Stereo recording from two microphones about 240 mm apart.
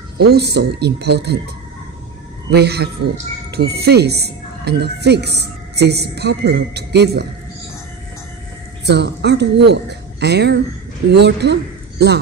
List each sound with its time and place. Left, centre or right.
0.2 s speech: right
2.5 s speech: right
8.8 s speech: right